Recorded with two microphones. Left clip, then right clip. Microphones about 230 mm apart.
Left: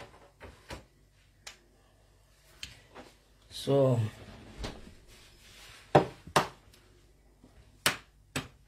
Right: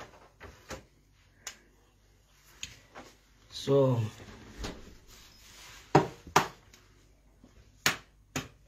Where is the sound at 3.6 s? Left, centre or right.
Left.